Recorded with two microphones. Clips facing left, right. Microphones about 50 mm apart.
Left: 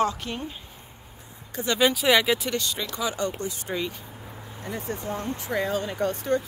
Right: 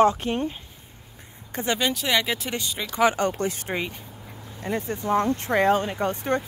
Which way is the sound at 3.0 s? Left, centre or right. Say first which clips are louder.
Right 9 dB; right.